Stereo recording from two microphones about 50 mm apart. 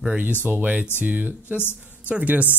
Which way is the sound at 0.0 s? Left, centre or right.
Right.